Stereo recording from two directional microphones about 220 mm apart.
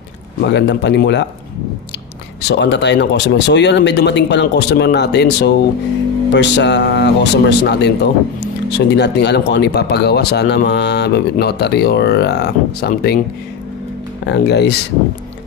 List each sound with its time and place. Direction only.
0.4 s speech: 50° left (ahead or behind)
2.4 s speech: 50° left (ahead or behind)
14.2 s speech: 50° left (ahead or behind)